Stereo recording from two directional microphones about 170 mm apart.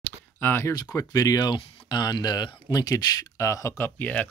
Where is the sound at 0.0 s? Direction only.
10° left (ahead or behind).